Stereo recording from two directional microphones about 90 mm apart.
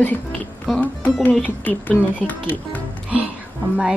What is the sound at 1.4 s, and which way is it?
Speech, 15° left (ahead or behind).